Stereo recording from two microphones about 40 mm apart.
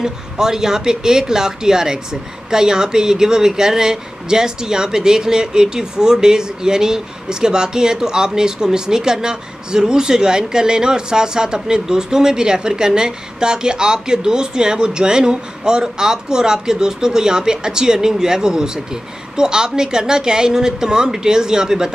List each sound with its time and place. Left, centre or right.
0.0 s speech: centre